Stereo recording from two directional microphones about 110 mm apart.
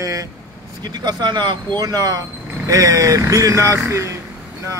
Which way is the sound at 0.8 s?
40° right (ahead or behind).